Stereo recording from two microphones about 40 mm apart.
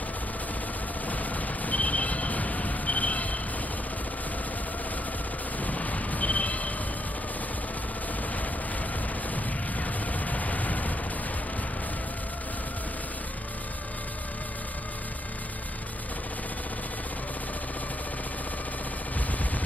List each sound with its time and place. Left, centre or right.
1.0 s train: left
5.6 s a sound: left
9.3 s music: left